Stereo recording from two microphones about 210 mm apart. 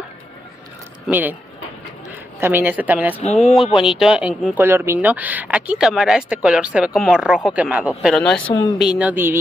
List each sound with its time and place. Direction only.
1.0 s speech: 10° right (ahead or behind)
2.4 s speech: 10° right (ahead or behind)
8.5 s speech: 20° left (ahead or behind)
8.7 s speech: 5° right (ahead or behind)